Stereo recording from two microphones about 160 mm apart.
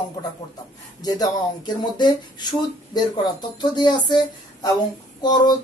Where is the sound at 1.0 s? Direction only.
25° left (ahead or behind).